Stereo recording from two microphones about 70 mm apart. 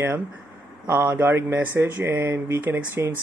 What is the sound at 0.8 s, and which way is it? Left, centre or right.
Speech, right.